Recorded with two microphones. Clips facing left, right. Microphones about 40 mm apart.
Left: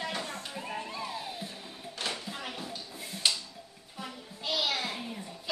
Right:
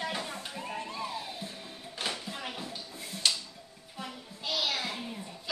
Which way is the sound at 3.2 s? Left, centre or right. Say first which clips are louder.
Even; centre.